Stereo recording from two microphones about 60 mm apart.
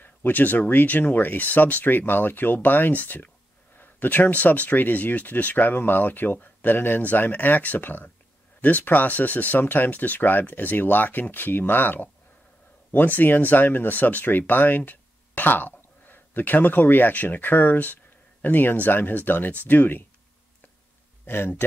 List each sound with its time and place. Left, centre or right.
0.0 s speech: left
21.3 s speech: left